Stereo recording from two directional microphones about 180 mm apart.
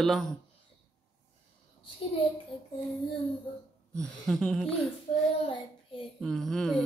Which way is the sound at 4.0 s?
5° left (ahead or behind).